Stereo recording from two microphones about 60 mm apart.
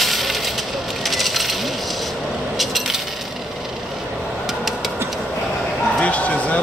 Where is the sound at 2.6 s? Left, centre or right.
Centre.